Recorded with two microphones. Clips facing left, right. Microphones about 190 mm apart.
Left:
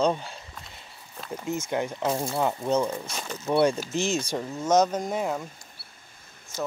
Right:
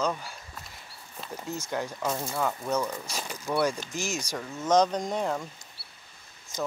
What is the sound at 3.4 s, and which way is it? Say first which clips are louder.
Speech: left 5 dB; 25° left (ahead or behind).